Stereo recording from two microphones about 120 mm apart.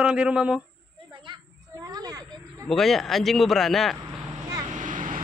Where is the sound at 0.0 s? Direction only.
10° right (ahead or behind).